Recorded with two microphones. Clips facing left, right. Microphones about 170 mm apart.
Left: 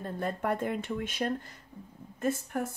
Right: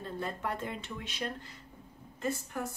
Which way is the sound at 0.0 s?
50° left (ahead or behind).